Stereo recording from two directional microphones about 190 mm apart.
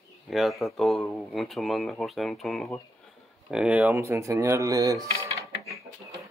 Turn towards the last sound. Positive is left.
turn(degrees=-15)  # may be behind; listen again after turning